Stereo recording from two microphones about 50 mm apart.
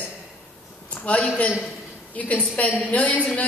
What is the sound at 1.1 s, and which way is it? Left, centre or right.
A woman's voice, left.